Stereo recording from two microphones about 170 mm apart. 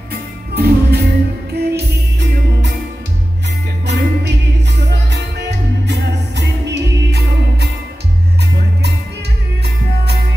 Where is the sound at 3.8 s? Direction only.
90° right.